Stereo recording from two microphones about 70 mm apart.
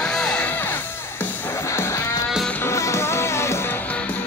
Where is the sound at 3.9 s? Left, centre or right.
Centre.